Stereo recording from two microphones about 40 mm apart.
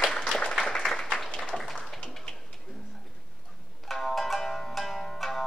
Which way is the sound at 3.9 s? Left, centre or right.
Centre.